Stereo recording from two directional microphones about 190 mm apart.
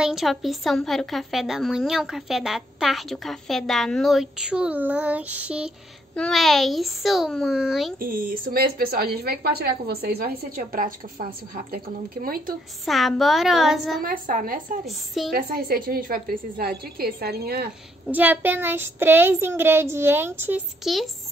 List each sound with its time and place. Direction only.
0.0 s a woman's voice: centre (ahead or behind)
8.0 s speech: 45° right (ahead or behind)
12.8 s a woman's voice: centre (ahead or behind)
14.0 s speech: 45° right (ahead or behind)
14.9 s a woman's voice: centre (ahead or behind)
15.3 s speech: 50° right (ahead or behind)
18.0 s child singing: 10° right (ahead or behind)